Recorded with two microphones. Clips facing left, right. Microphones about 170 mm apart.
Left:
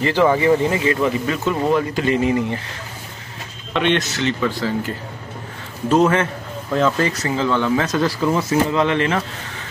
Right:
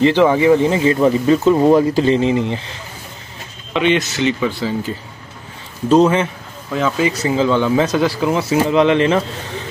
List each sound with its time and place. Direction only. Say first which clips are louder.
0.0 s speech: right 4 dB; 20° right (ahead or behind)
3.7 s speech: right 3 dB; 5° right (ahead or behind)
5.9 s speech: right 3 dB; 20° right (ahead or behind)
6.7 s speech: right 1 dB; 5° right (ahead or behind)